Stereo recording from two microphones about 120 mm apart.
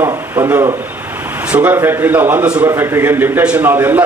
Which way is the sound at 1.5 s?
15° right (ahead or behind).